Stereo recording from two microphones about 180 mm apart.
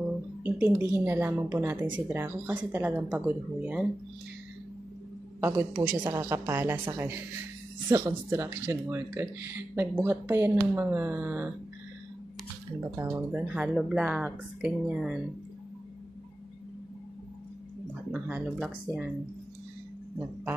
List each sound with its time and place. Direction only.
0.4 s speech: 10° right (ahead or behind)
5.4 s speech: 10° right (ahead or behind)
12.9 s speech: 15° right (ahead or behind)
18.1 s speech: 5° right (ahead or behind)